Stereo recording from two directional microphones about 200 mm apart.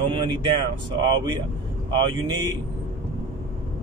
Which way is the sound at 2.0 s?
20° right (ahead or behind).